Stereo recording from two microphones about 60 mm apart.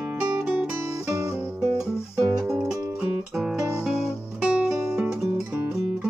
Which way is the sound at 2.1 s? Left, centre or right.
Centre.